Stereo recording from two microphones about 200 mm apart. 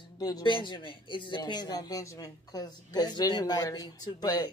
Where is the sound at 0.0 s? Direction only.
20° left (ahead or behind).